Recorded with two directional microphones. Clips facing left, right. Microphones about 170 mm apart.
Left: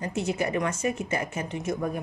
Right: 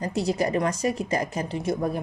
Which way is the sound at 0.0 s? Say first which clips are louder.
Right 3 dB; 35° right (ahead or behind).